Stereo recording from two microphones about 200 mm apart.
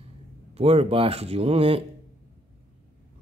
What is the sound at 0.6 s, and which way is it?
Speech, 30° right (ahead or behind).